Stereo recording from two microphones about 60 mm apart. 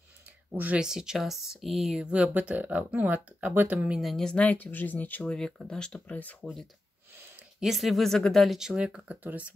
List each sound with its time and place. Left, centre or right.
0.5 s speech: right
0.7 s speech: centre
2.0 s speech: centre
4.2 s speech: centre
4.5 s speech: left
5.2 s speech: centre
5.9 s speech: left
7.6 s speech: centre
8.5 s speech: centre
9.0 s speech: right